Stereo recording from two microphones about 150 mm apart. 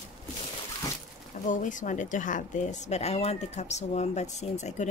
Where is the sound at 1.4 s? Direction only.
60° left (ahead or behind).